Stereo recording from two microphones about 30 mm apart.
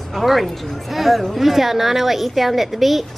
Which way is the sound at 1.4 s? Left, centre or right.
Centre.